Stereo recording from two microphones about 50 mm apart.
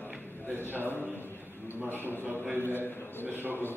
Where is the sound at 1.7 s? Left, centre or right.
Right.